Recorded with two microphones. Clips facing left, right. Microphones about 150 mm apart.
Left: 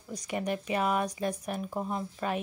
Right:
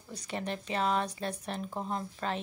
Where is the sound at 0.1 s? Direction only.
10° left (ahead or behind).